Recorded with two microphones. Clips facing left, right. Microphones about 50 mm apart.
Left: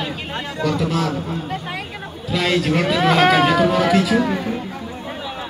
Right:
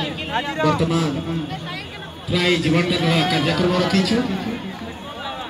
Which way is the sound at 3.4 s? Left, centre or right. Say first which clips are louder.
Left 4 dB; centre.